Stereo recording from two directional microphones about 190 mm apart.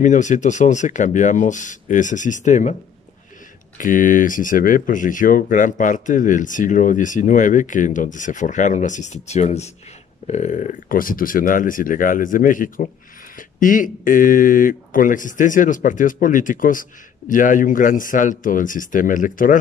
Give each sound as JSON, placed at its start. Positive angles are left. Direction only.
{"t": 0.0, "sound": "speech", "side_deg": 40}
{"t": 3.7, "sound": "speech", "side_deg": 45}